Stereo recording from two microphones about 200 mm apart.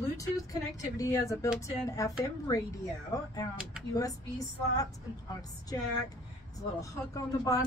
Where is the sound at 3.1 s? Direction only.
20° left (ahead or behind).